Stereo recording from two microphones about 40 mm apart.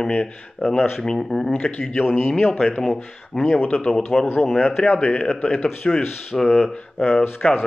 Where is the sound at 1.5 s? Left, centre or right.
Left.